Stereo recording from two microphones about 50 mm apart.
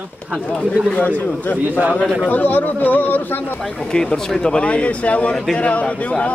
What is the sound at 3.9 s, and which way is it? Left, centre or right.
Speech, centre.